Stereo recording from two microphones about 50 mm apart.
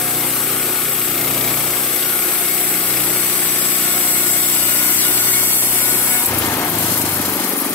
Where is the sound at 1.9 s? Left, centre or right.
Left.